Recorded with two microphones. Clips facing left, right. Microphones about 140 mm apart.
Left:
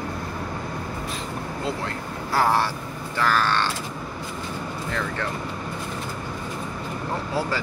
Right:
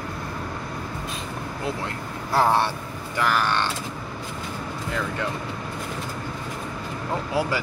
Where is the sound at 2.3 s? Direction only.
20° right (ahead or behind).